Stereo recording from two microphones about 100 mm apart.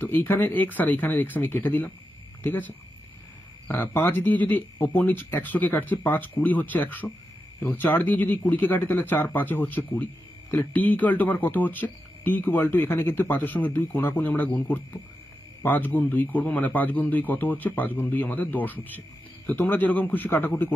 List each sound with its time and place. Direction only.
0.0 s speech: 20° left (ahead or behind)